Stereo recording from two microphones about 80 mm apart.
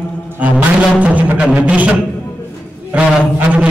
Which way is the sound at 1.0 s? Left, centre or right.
Centre.